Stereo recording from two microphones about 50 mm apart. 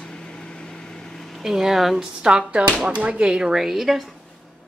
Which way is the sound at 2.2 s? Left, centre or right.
Centre.